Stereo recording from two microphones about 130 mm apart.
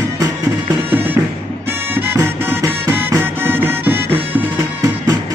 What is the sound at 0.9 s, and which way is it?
Music, 15° right (ahead or behind).